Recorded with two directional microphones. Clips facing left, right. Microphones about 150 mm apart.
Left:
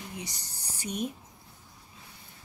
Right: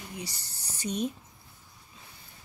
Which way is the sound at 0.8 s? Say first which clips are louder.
Right 2 dB; 10° left (ahead or behind).